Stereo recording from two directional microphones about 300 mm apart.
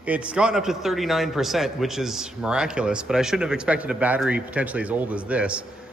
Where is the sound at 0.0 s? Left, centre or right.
Centre.